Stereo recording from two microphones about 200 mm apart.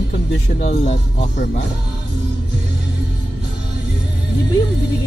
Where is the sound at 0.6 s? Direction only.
35° left (ahead or behind).